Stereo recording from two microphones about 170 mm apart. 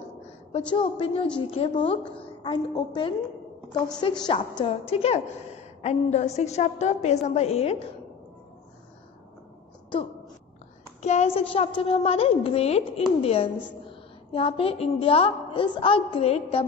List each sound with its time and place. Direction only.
0.5 s a woman's voice: 30° left (ahead or behind)
4.3 s a woman's voice: 30° left (ahead or behind)
11.0 s a woman's voice: 40° left (ahead or behind)